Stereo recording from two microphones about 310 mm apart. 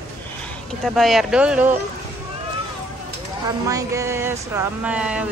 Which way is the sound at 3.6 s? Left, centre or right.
Centre.